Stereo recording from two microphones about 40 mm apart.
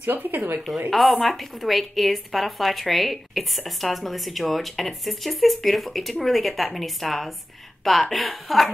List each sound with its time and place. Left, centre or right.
0.0 s speech: right
0.8 s a woman's voice: centre